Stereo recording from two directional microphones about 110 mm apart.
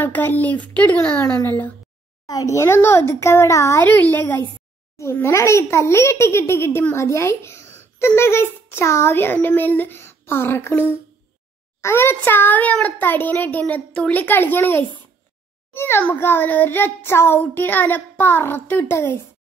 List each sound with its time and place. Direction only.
0.0 s a child's voice: 15° left (ahead or behind)
2.2 s a child's voice: 30° left (ahead or behind)
3.8 s a child's voice: 15° left (ahead or behind)